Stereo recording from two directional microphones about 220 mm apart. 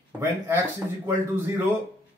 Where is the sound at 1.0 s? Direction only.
10° right (ahead or behind).